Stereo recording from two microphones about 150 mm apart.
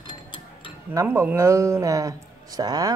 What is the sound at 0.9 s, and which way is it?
Speech, 15° right (ahead or behind).